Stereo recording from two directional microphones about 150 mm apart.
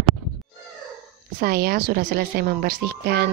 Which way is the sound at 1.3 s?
80° right.